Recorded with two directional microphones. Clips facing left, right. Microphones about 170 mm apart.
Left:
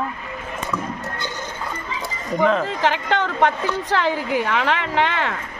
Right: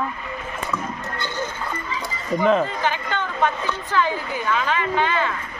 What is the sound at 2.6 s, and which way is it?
A woman's voice, 80° left.